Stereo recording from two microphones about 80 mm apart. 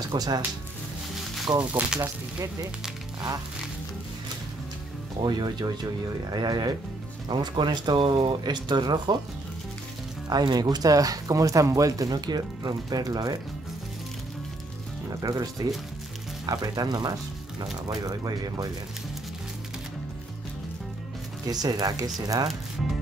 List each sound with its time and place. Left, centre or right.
0.1 s speech: right
1.6 s speech: right
2.0 s speech: right
5.2 s speech: right
7.2 s speech: right
10.3 s speech: right
15.2 s speech: right
21.5 s speech: right